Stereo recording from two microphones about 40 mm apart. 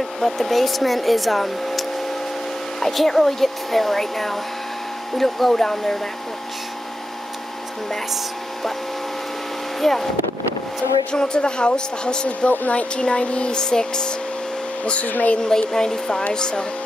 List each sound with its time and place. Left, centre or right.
0.2 s speech: centre
9.8 s speech: centre
11.1 s speech: left
12.3 s speech: left
13.6 s speech: centre
15.0 s speech: left
15.3 s speech: left